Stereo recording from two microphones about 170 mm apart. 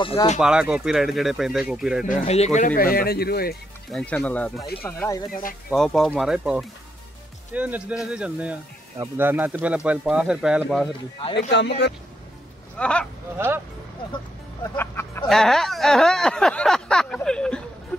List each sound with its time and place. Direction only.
0.0 s speech: 30° left (ahead or behind)
0.4 s speech: 5° right (ahead or behind)
2.2 s speech: 40° left (ahead or behind); by 3.5 s 65° left (ahead or behind)
3.9 s speech: 5° left (ahead or behind)
5.3 s speech: 55° left (ahead or behind)
5.7 s a man's voice: centre (ahead or behind)
11.5 s speech: 90° left
12.7 s speech: 5° left (ahead or behind)
14.6 s speech: 15° left (ahead or behind)
15.2 s speech: centre (ahead or behind)